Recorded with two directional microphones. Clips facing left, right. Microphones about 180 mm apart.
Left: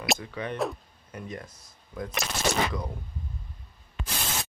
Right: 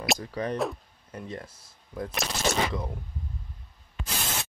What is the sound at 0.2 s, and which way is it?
Speech, 35° right (ahead or behind).